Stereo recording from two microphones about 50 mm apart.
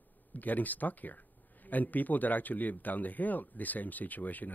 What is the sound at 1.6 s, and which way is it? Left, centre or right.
A woman's voice, left.